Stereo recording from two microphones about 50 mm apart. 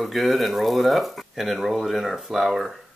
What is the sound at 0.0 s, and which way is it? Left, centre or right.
Speech, centre.